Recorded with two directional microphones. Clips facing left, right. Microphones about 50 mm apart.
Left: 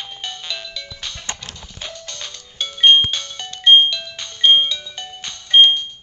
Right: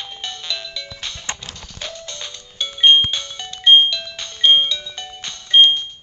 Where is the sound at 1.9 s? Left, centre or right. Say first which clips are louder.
Right 1 dB; right.